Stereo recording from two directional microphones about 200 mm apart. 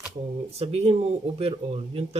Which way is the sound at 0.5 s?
30° right (ahead or behind).